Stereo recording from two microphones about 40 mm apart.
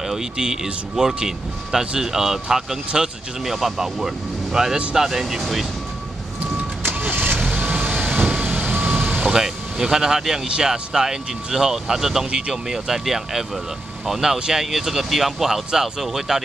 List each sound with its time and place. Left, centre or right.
0.1 s speech: centre
7.0 s vehicle: right
7.8 s vehicle: right
9.2 s speech: centre
12.3 s speech: right
12.6 s speech: centre